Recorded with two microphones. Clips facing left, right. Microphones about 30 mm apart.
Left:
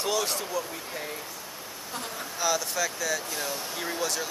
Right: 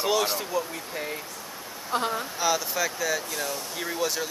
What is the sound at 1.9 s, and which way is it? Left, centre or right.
Speech, right.